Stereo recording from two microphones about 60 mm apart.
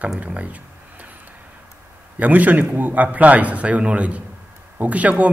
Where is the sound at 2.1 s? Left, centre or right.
Right.